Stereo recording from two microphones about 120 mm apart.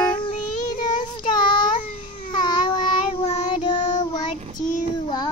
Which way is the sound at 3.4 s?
40° left (ahead or behind).